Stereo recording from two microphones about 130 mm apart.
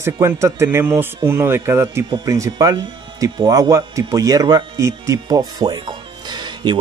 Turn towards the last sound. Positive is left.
turn(degrees=-35)  # may be behind; listen again after turning